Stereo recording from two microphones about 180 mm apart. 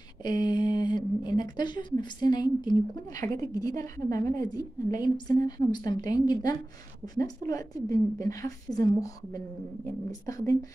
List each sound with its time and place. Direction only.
0.2 s speech: 25° left (ahead or behind)